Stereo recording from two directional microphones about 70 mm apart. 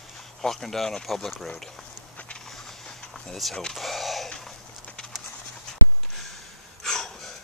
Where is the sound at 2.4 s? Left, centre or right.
Centre.